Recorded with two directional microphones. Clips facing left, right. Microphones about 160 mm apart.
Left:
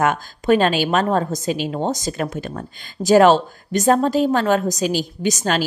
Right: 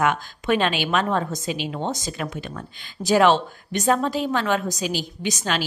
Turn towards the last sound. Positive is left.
turn(degrees=45)  # may be behind; listen again after turning